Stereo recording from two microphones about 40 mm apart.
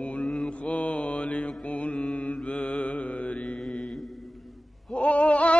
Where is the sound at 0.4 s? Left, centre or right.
Left.